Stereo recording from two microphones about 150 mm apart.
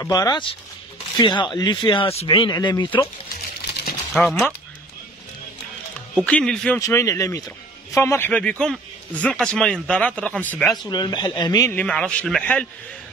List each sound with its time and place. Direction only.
0.0 s speech: 25° left (ahead or behind)
4.1 s a man's voice: centre (ahead or behind)
6.1 s a man's voice: 5° left (ahead or behind)
6.8 s a man's voice: 20° left (ahead or behind)
10.9 s speech: 30° left (ahead or behind)
11.7 s a man's voice: 5° left (ahead or behind)